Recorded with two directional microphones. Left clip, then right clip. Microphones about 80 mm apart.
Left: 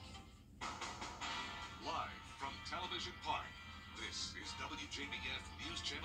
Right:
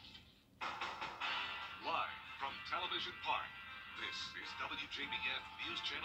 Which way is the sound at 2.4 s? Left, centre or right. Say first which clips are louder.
Right 3 dB; centre.